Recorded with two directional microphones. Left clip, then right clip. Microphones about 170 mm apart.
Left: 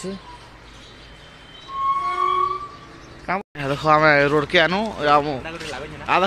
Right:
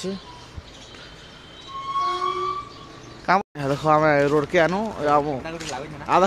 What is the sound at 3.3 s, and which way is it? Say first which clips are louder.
Speech: right 4 dB; 20° right (ahead or behind).